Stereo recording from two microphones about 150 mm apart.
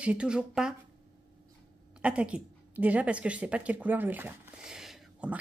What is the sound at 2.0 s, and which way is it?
A woman's voice, 5° right (ahead or behind).